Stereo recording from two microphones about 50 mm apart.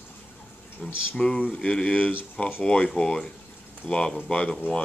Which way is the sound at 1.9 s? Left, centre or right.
Left.